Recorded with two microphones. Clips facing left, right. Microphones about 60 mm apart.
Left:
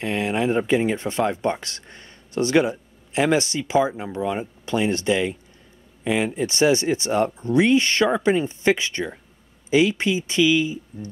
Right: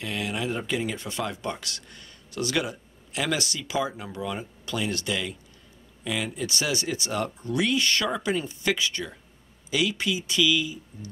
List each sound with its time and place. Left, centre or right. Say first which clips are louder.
0.0 s speech: left 7 dB; left